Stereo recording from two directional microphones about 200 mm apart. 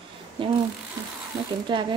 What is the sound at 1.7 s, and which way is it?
Speech, 20° right (ahead or behind).